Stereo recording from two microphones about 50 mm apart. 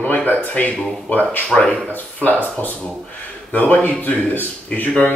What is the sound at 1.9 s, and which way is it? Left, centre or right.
Speech, left.